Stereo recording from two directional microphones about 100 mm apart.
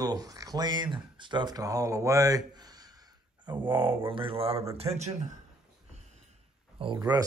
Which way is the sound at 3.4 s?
55° right (ahead or behind).